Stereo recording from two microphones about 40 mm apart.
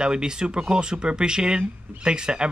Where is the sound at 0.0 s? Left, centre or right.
Right.